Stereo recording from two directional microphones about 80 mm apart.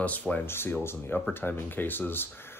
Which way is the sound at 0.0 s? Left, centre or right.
Centre.